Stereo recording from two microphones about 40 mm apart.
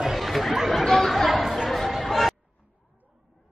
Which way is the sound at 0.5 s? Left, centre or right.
Centre.